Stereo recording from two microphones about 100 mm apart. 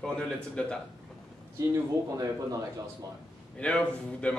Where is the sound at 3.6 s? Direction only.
10° left (ahead or behind).